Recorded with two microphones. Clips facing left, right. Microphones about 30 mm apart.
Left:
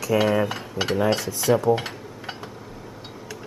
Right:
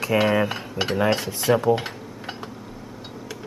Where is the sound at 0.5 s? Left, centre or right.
Centre.